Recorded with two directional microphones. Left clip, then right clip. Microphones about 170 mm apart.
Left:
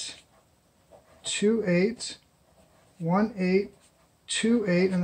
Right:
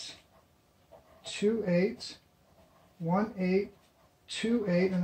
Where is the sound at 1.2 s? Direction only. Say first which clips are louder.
Left 5 dB; 20° left (ahead or behind).